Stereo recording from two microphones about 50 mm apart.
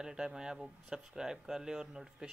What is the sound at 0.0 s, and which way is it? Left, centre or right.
Speech, centre.